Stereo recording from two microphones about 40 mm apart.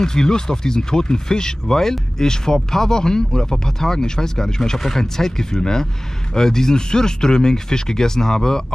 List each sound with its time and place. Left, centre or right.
0.0 s speech: centre